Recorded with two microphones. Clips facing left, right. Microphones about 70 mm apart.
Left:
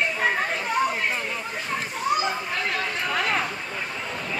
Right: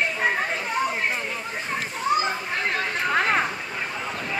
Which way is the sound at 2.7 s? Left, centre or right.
Right.